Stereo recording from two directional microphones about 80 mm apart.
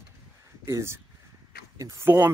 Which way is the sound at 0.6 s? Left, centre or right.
Right.